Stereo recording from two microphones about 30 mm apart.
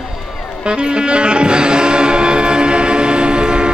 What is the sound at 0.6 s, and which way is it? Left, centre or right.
Music, right.